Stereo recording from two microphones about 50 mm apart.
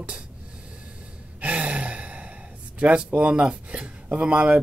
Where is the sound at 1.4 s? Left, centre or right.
Right.